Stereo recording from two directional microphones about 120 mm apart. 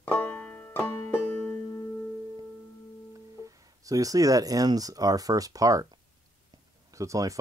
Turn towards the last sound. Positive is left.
turn(degrees=-25)  # may be behind; listen again after turning